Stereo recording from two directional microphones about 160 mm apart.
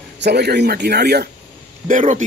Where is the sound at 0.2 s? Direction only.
90° right.